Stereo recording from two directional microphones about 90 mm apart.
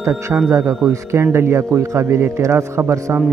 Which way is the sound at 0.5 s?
30° right (ahead or behind).